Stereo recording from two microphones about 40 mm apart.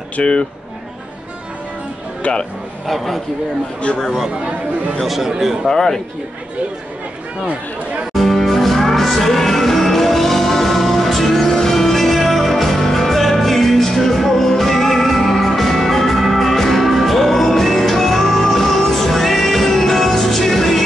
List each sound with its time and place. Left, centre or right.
0.2 s speech: left
2.2 s speech: left
2.9 s a man's voice: centre
5.0 s a man's voice: centre
5.7 s speech: centre
8.1 s music: centre